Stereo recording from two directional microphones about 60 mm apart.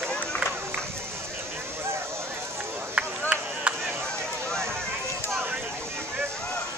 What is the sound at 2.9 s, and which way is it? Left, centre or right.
Chop, right.